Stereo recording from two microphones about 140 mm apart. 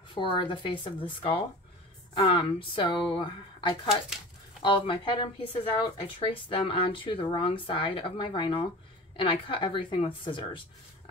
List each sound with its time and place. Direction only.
0.1 s a woman's voice: 35° left (ahead or behind)